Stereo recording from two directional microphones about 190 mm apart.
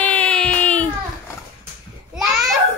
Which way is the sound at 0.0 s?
5° left (ahead or behind).